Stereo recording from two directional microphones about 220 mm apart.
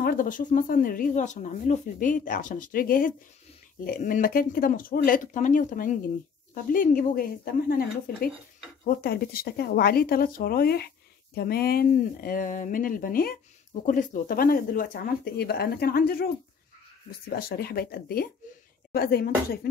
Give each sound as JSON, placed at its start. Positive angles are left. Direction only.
{"t": 0.0, "sound": "speech", "side_deg": 40}
{"t": 17.3, "sound": "speech", "side_deg": 45}